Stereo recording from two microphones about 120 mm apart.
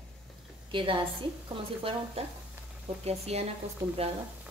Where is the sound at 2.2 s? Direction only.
60° right (ahead or behind).